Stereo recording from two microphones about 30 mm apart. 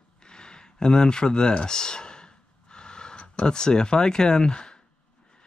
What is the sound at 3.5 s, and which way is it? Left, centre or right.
Speech, left.